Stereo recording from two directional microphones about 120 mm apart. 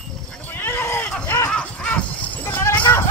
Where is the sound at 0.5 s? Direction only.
15° left (ahead or behind).